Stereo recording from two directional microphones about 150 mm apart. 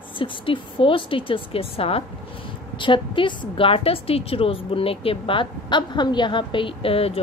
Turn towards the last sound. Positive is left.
turn(degrees=40)  # may be behind; listen again after turning